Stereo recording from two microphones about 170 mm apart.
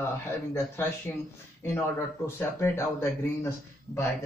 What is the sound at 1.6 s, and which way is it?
Speech, 15° left (ahead or behind).